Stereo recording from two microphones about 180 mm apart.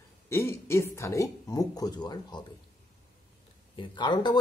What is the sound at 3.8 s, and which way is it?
Speech, 25° left (ahead or behind).